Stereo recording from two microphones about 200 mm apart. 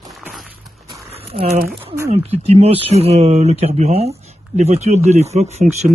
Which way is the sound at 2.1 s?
30° right (ahead or behind).